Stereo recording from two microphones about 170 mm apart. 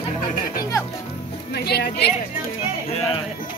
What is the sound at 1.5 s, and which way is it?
Speech, 70° left (ahead or behind).